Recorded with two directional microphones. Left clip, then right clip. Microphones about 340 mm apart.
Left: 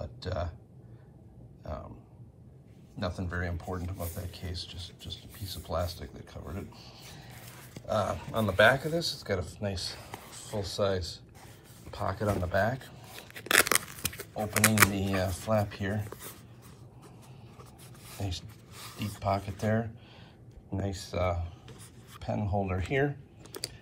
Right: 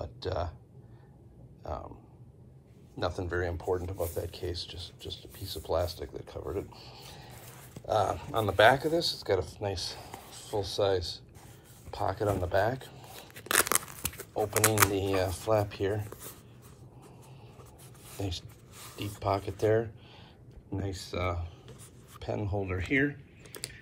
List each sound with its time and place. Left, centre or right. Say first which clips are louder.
0.0 s a sound: right 2 dB; centre
3.0 s speech: right 3 dB; centre
12.7 s tearing: right 1 dB; centre
15.0 s speech: right 2 dB; centre
18.1 s speech: right 2 dB; centre
22.9 s speech: right 1 dB; centre